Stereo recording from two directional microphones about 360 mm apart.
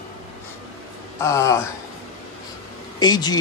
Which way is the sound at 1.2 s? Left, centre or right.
Centre.